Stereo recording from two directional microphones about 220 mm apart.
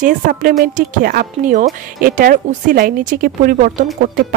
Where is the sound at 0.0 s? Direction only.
40° right (ahead or behind).